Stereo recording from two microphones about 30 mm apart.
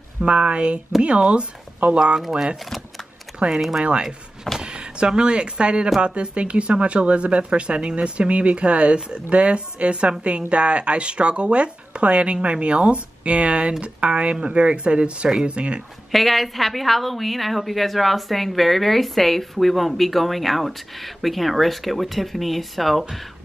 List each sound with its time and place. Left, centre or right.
0.3 s speech: right
3.3 s speech: right
16.1 s a woman's voice: centre